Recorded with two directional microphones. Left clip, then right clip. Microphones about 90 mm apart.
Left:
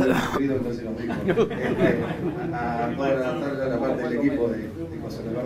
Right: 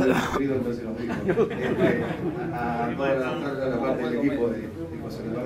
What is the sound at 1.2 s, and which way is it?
Speech, 45° left (ahead or behind).